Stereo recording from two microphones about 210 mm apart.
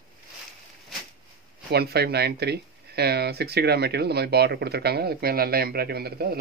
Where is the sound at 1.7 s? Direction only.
50° right (ahead or behind).